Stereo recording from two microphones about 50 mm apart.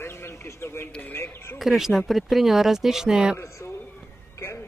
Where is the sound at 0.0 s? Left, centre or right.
Left.